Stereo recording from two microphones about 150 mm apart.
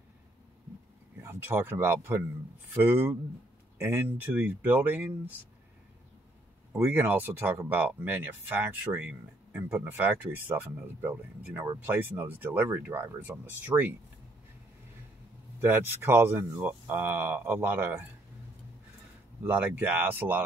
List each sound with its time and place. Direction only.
1.2 s speech: 15° right (ahead or behind)
6.7 s speech: 15° right (ahead or behind)
15.6 s speech: 15° right (ahead or behind)
19.4 s speech: 10° right (ahead or behind)